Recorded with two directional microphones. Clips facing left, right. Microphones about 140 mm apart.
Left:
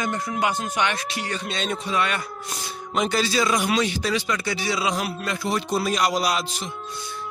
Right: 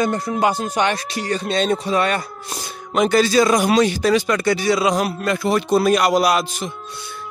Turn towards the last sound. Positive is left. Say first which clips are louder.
# right 7 dB
turn(degrees=-55)  # may be behind; listen again after turning